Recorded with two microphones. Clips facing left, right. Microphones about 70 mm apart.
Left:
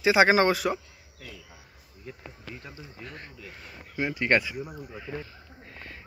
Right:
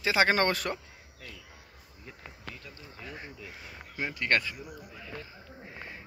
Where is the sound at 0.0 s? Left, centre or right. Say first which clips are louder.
Left 5 dB; centre.